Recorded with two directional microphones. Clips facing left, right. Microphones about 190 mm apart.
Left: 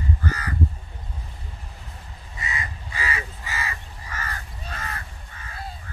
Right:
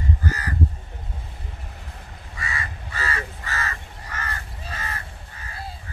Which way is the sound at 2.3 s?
20° left (ahead or behind).